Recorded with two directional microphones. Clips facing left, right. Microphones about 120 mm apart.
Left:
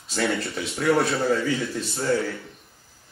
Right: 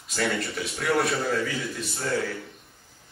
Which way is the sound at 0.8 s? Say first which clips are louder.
Left 4 dB; 25° left (ahead or behind).